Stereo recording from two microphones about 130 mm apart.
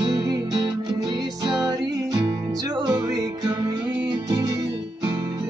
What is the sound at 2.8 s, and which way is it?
Music, 30° right (ahead or behind).